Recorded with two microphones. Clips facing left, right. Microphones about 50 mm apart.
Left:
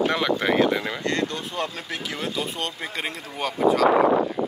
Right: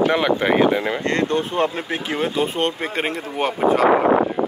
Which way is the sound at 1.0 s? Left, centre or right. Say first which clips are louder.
Right 6 dB; right.